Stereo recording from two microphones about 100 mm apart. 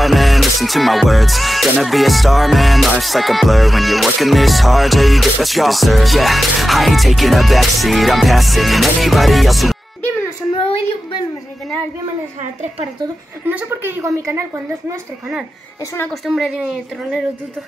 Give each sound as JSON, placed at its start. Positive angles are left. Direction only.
{"t": 0.0, "sound": "music", "side_deg": 0}
{"t": 10.6, "sound": "child singing", "side_deg": 60}
{"t": 13.5, "sound": "a woman's voice", "side_deg": -20}
{"t": 14.0, "sound": "a woman's voice", "side_deg": -30}
{"t": 16.1, "sound": "music", "side_deg": -5}